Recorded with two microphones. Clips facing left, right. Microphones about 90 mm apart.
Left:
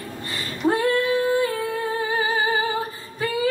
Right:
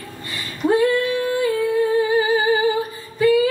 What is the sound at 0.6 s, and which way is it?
Female singing, 20° left (ahead or behind).